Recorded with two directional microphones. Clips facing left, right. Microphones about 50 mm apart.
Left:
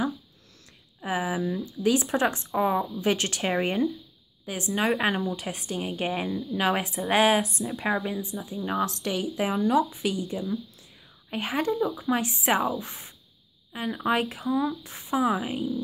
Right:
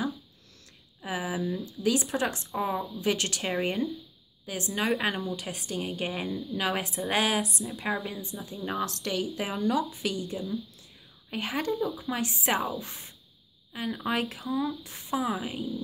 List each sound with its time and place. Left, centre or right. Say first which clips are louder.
1.0 s speech: left 4 dB; centre
7.5 s speech: left 4 dB; left
7.8 s speech: left 4 dB; centre
8.5 s a woman's voice: left 4 dB; centre
8.8 s speech: left 2 dB; centre